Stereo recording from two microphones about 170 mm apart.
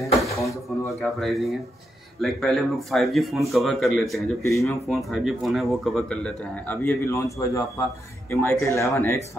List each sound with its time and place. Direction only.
0.4 s a sound: 20° left (ahead or behind)
1.2 s a man's voice: centre (ahead or behind)
4.5 s speech: 20° left (ahead or behind)
4.8 s a man's voice: centre (ahead or behind); by 9.2 s 15° left (ahead or behind)